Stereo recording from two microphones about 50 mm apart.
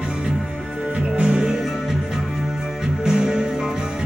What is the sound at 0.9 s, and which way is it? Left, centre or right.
Music, right.